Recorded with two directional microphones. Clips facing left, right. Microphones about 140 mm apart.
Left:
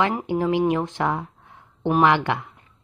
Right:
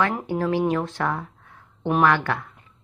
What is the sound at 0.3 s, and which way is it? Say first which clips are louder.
A woman's voice: left 3 dB; 15° left (ahead or behind).